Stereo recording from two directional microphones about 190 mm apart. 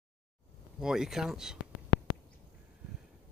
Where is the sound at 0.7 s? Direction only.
5° right (ahead or behind).